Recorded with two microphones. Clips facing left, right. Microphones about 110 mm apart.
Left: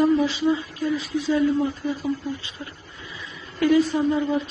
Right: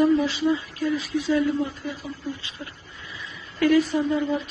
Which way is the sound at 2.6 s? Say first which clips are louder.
Left 1 dB; 25° left (ahead or behind).